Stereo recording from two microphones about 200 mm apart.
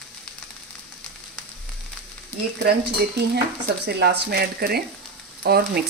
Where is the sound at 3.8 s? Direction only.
55° right (ahead or behind).